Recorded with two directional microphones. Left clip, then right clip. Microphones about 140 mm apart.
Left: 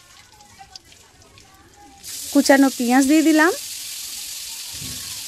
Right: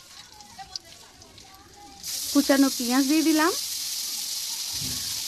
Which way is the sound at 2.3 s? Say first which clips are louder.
Left 7 dB; 45° left (ahead or behind).